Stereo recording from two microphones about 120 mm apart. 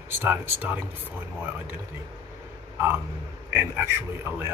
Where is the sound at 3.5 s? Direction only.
20° right (ahead or behind).